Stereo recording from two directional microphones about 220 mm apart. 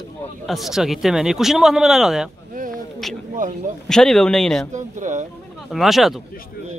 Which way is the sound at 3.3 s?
35° right (ahead or behind).